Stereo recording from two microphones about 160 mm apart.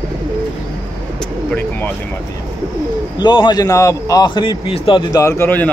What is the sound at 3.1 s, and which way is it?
A man's voice, 30° left (ahead or behind).